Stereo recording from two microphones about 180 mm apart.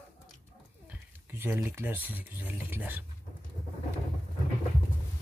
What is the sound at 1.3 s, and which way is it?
Speech, 15° right (ahead or behind).